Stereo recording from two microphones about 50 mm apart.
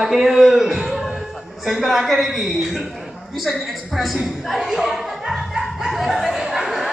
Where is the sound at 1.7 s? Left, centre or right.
Centre.